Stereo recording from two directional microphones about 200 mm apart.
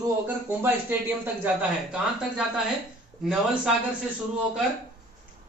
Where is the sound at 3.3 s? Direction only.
5° right (ahead or behind).